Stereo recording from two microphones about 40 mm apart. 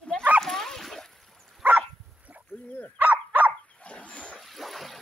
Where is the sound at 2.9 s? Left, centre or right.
Right.